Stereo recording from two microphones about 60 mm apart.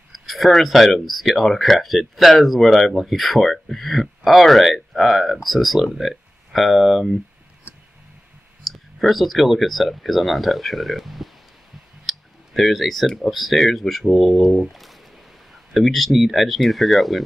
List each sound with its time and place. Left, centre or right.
0.1 s speech: centre
7.7 s music: right
8.6 s speech: centre